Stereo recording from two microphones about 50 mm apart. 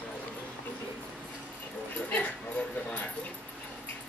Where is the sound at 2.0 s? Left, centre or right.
Left.